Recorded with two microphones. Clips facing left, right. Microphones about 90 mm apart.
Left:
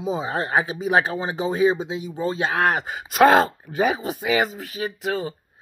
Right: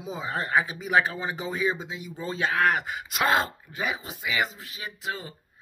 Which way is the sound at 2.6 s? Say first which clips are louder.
Left 3 dB; 30° left (ahead or behind).